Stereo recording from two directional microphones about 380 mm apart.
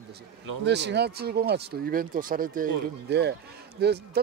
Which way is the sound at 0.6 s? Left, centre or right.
Right.